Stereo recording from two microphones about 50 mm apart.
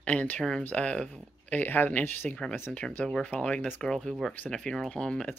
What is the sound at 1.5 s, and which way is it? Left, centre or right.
Speech, left.